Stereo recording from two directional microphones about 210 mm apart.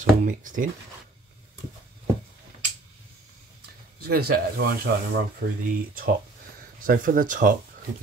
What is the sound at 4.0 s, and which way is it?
Speech, 45° right (ahead or behind).